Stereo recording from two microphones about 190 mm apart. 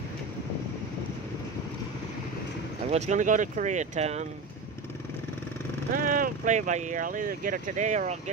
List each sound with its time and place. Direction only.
2.9 s speech: 40° right (ahead or behind)
5.9 s speech: 45° right (ahead or behind)